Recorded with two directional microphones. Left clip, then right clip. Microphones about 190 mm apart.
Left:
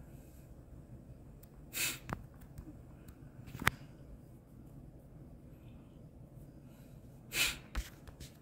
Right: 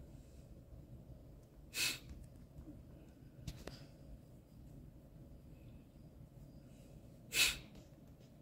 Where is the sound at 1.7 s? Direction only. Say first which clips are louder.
Left 1 dB; 15° left (ahead or behind).